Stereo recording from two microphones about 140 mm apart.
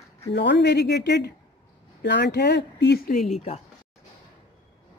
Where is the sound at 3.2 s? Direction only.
55° left (ahead or behind).